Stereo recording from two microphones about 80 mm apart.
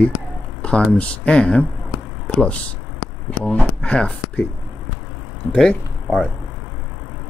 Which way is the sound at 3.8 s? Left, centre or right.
Centre.